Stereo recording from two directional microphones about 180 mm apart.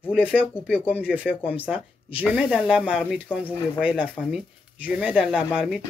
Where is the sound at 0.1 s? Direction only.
5° right (ahead or behind).